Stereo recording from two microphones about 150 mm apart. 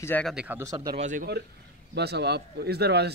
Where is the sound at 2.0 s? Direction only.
90° right.